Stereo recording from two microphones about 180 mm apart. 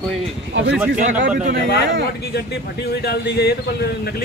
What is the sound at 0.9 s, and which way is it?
Speech, 45° right (ahead or behind).